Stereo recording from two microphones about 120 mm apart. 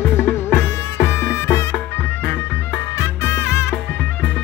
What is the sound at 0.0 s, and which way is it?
Music, 15° left (ahead or behind).